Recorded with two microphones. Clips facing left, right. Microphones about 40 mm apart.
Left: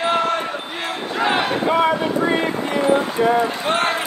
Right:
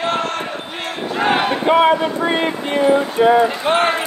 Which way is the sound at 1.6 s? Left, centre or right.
Right.